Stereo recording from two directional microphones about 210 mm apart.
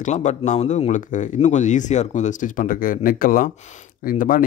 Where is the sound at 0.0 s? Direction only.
35° left (ahead or behind).